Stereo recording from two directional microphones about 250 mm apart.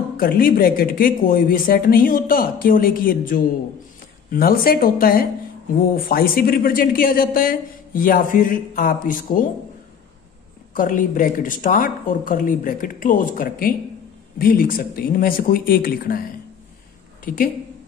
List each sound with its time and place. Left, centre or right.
0.2 s speech: left
10.7 s a woman's voice: left